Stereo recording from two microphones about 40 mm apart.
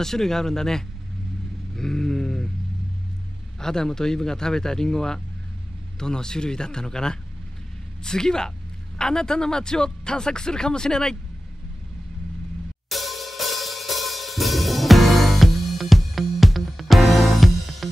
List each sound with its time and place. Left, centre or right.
0.0 s a man's voice: centre
1.8 s a sound: centre
3.5 s a man's voice: centre
12.9 s cymbal: centre